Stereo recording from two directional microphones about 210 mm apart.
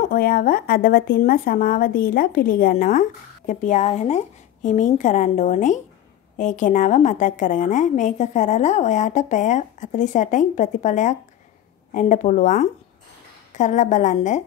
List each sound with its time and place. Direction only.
0.0 s speech: 40° left (ahead or behind)